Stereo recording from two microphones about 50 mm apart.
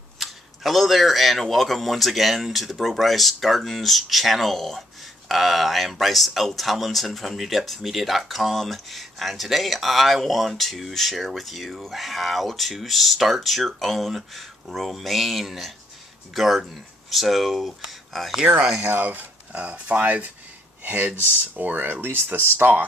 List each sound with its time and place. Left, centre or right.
0.2 s speech: centre
18.8 s speech: right
19.0 s speech: right